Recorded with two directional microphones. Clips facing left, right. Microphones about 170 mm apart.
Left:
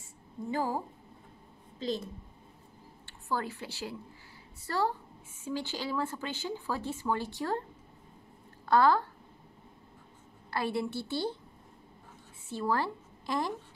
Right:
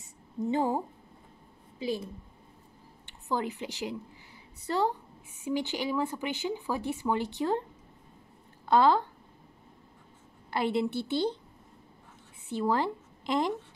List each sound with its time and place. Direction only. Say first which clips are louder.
0.0 s a sound: right 7 dB; 20° right (ahead or behind)
1.8 s speech: right 1 dB; 10° right (ahead or behind)
3.1 s a woman's voice: right 3 dB; 20° right (ahead or behind)
8.6 s speech: right 2 dB; 20° right (ahead or behind)
10.5 s a woman's voice: right 4 dB; 20° right (ahead or behind)
12.4 s speech: right 3 dB; 20° right (ahead or behind)